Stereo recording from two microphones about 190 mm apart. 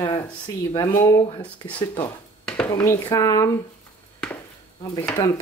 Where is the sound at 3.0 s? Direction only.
20° left (ahead or behind).